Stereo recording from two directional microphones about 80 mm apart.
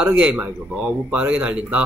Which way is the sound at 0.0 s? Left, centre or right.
Centre.